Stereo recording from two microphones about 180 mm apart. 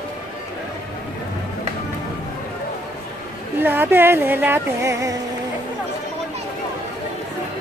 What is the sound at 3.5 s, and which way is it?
Music, 10° right (ahead or behind).